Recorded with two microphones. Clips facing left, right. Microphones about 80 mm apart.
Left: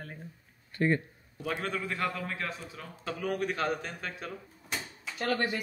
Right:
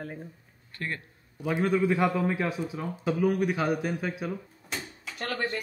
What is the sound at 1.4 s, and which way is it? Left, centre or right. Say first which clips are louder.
A man's voice: right 8 dB; centre.